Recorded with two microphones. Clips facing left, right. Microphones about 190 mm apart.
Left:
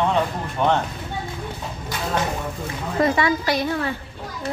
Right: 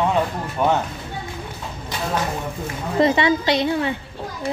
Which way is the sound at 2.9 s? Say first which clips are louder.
Right 3 dB; 25° right (ahead or behind).